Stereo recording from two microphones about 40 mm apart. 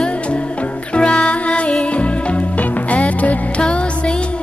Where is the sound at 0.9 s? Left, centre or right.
Left.